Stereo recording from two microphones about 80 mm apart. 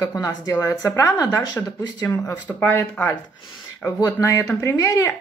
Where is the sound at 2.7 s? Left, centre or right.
Left.